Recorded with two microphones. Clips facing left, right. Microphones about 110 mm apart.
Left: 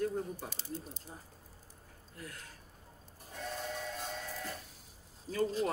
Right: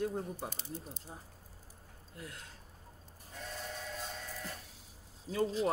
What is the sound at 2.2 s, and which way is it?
Speech, 20° right (ahead or behind).